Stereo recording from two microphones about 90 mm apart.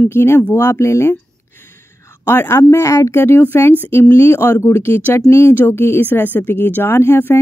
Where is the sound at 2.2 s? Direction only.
25° left (ahead or behind).